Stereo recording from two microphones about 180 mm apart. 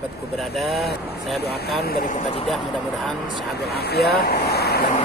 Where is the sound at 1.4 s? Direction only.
60° left (ahead or behind).